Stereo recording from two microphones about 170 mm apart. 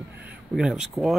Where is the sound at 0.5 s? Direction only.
5° right (ahead or behind).